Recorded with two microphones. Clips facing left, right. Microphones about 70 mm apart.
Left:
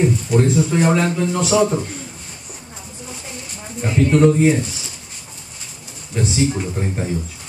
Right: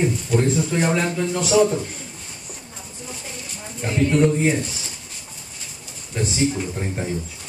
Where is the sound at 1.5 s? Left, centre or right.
Left.